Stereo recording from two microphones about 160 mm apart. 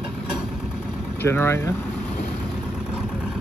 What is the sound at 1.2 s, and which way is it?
Speech, 15° left (ahead or behind).